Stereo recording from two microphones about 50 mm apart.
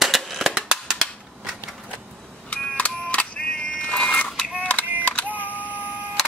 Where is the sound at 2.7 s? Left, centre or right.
Left.